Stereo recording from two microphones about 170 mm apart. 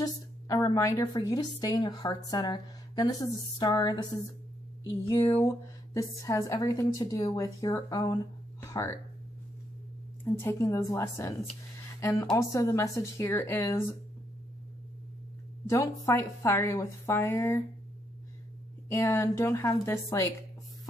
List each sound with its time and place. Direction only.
0.0 s a woman's voice: 20° left (ahead or behind)
8.6 s music: 15° left (ahead or behind)
10.2 s a woman's voice: 15° left (ahead or behind)
15.6 s a woman's voice: 20° left (ahead or behind)
18.9 s a woman's voice: 15° left (ahead or behind)